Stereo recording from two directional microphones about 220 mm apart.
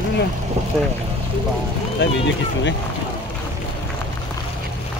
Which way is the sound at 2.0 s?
55° left (ahead or behind).